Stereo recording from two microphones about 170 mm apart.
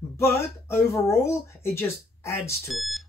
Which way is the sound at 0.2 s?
15° left (ahead or behind).